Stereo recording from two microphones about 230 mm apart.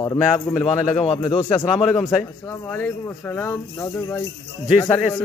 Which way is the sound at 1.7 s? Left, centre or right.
Centre.